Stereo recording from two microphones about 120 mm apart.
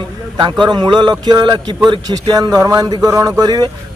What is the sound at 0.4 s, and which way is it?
A man's voice, 40° right (ahead or behind).